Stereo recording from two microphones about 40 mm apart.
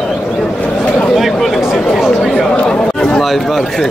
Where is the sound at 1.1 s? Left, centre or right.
Centre.